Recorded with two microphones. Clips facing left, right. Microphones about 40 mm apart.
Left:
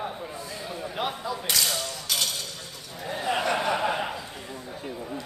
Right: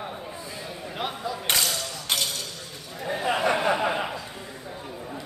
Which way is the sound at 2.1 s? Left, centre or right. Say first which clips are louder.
Right 2 dB; right.